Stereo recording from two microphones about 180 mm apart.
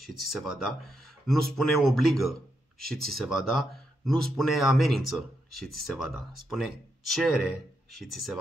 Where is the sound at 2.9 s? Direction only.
Centre (ahead or behind).